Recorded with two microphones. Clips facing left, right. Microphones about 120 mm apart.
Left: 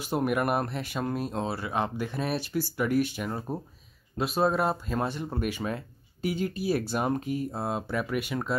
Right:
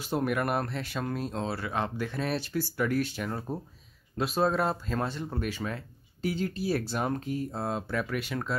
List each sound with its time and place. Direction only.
0.0 s speech: 15° left (ahead or behind)